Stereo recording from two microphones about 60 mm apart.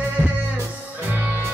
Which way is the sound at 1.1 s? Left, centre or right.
Right.